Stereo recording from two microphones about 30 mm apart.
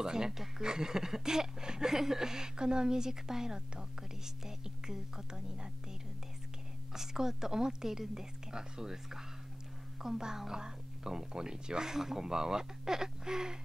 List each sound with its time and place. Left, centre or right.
0.0 s speech: right
6.9 s a woman's voice: centre
11.9 s a woman's voice: centre